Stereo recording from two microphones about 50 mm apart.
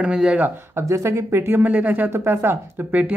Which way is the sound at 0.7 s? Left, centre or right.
Right.